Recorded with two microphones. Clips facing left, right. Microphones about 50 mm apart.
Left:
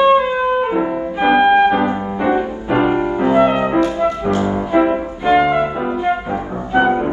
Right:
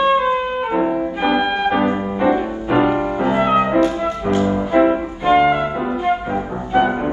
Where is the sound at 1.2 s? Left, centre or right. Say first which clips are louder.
Left 8 dB; left.